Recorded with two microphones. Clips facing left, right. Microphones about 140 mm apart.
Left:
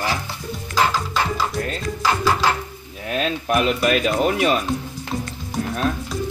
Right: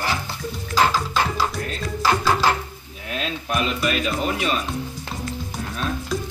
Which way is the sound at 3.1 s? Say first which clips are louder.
Left 5 dB; 50° left (ahead or behind).